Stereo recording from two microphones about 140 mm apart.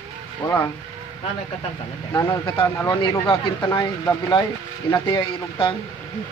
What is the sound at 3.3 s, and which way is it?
Speech, 35° left (ahead or behind).